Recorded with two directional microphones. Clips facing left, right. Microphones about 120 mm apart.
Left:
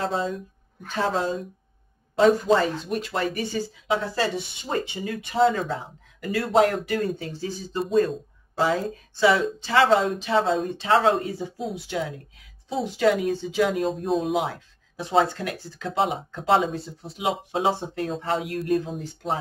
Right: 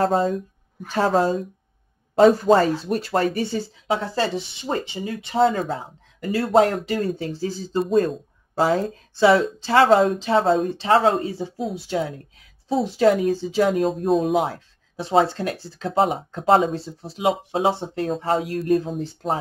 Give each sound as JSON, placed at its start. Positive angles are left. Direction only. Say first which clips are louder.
{"t": 0.0, "sound": "speech", "louder": "right 7 dB", "side_deg": -45}
{"t": 13.8, "sound": "speech", "louder": "right 4 dB", "side_deg": 0}
{"t": 14.2, "sound": "speech", "louder": "right 4 dB", "side_deg": -35}